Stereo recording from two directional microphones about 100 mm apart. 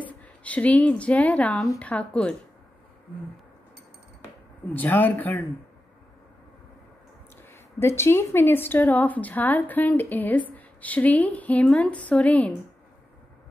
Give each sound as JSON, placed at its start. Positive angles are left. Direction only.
{"t": 0.2, "sound": "speech", "side_deg": 15}
{"t": 4.7, "sound": "speech", "side_deg": 15}
{"t": 7.4, "sound": "a woman's voice", "side_deg": 25}